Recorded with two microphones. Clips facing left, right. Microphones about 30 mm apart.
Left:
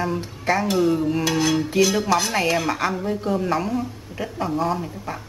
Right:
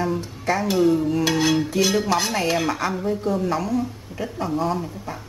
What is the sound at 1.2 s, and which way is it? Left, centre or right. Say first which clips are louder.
Cutlery: right 1 dB; centre.